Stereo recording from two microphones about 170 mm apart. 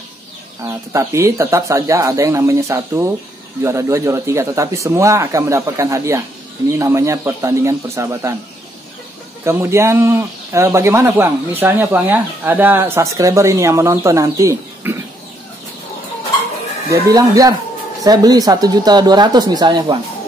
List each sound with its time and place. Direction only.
0.7 s speech: 15° right (ahead or behind)
9.4 s speech: 15° right (ahead or behind)
16.9 s speech: 20° right (ahead or behind)